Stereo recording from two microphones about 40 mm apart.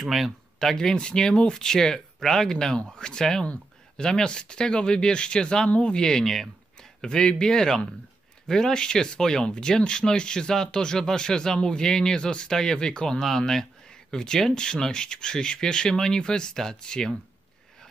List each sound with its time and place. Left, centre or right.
0.0 s speech: centre
0.6 s speech: centre
7.1 s speech: left